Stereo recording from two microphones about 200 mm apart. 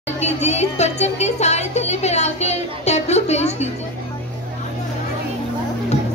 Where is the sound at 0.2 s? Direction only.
35° left (ahead or behind).